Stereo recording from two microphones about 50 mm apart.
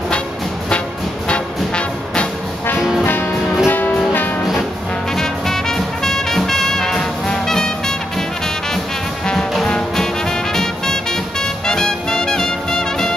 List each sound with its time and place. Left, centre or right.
3.0 s music: left
5.1 s music: centre
9.7 s music: centre